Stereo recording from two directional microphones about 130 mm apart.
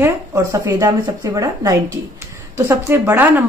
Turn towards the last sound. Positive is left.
turn(degrees=-15)  # may be behind; listen again after turning